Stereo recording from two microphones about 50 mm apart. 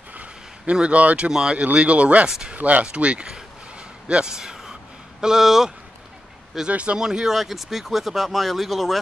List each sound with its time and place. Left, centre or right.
0.1 s a sound: right
0.7 s speech: right
2.2 s speech: centre
2.5 s speech: right
4.4 s a sound: centre
5.2 s speech: centre
6.7 s speech: right
7.0 s speech: centre